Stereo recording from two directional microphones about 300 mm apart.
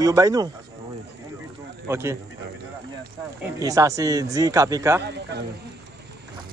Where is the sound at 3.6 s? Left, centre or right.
Centre.